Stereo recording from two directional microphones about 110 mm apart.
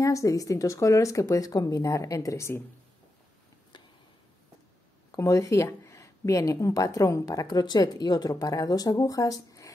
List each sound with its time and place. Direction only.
0.0 s speech: 30° left (ahead or behind)
3.7 s a sound: 45° left (ahead or behind)
5.1 s speech: 30° left (ahead or behind)